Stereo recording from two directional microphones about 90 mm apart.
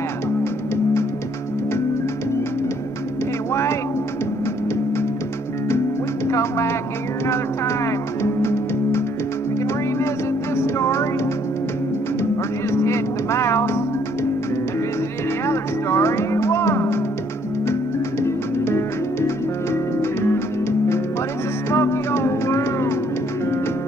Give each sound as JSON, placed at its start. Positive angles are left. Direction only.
{"t": 6.2, "sound": "music", "side_deg": 30}
{"t": 10.5, "sound": "music", "side_deg": 30}
{"t": 12.7, "sound": "music", "side_deg": 30}
{"t": 15.4, "sound": "music", "side_deg": 30}
{"t": 18.2, "sound": "music", "side_deg": 30}